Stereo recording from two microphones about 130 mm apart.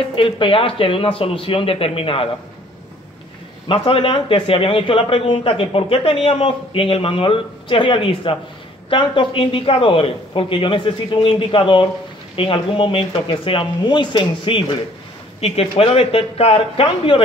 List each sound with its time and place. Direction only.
0.1 s a man's voice: 40° left (ahead or behind)
3.6 s a man's voice: 45° left (ahead or behind)
15.4 s a man's voice: 50° left (ahead or behind)